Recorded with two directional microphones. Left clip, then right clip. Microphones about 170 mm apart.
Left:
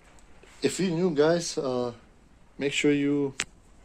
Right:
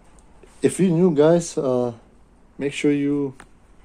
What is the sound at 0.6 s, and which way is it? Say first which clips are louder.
Speech: right 8 dB; 20° right (ahead or behind).